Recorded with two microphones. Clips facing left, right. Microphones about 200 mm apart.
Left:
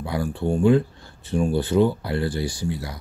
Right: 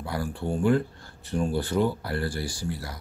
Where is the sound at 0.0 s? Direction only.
20° left (ahead or behind).